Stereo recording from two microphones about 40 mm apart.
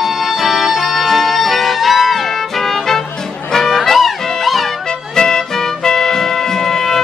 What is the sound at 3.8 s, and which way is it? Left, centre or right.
Music, centre.